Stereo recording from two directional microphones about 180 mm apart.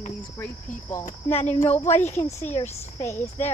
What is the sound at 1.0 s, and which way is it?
Speech, 35° left (ahead or behind).